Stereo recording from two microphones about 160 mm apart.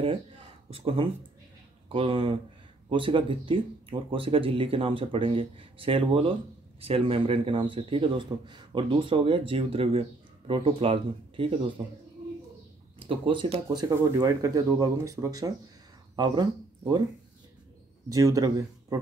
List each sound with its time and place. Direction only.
0.7 s speech: 35° right (ahead or behind)
13.0 s speech: 35° right (ahead or behind)
13.8 s speech: 20° right (ahead or behind)
18.1 s speech: 20° right (ahead or behind)